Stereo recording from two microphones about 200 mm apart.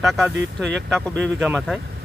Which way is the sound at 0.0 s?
Centre (ahead or behind).